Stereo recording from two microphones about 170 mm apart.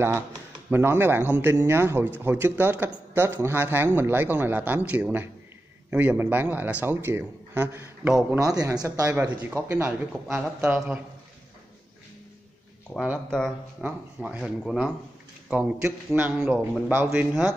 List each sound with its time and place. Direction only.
0.7 s speech: 10° right (ahead or behind)
8.4 s speech: 20° right (ahead or behind)
12.9 s speech: centre (ahead or behind)